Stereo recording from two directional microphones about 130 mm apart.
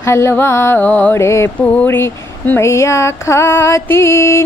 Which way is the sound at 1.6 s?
10° left (ahead or behind).